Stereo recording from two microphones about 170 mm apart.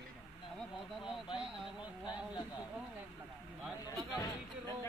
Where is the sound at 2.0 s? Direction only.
25° left (ahead or behind).